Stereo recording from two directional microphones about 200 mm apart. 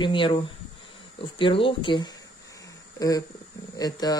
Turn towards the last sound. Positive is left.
turn(degrees=20)  # may be behind; listen again after turning